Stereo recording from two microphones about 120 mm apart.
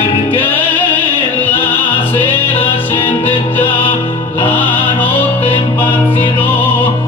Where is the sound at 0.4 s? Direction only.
15° left (ahead or behind).